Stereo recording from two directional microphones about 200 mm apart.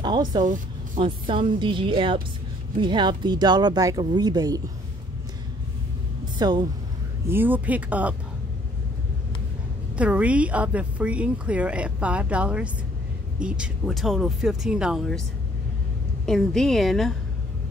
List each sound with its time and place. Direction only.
0.0 s music: 20° right (ahead or behind)
0.9 s speech: 25° right (ahead or behind)
6.3 s speech: 20° right (ahead or behind)
7.2 s speech: 10° right (ahead or behind)
9.9 s speech: 5° right (ahead or behind)
16.3 s speech: centre (ahead or behind)